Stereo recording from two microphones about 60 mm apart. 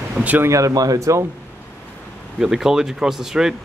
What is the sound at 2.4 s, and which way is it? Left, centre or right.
Speech, centre.